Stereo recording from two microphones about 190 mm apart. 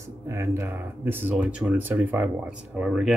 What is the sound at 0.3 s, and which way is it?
Speech, 15° right (ahead or behind).